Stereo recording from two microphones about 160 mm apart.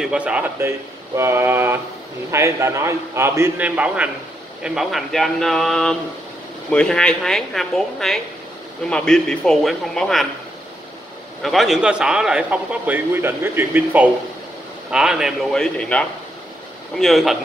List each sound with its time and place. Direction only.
0.0 s speech: 5° right (ahead or behind)
11.4 s speech: centre (ahead or behind)